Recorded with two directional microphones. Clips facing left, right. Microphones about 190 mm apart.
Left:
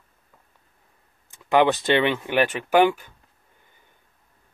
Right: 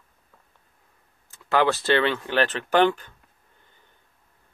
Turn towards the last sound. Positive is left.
turn(degrees=10)  # may be behind; listen again after turning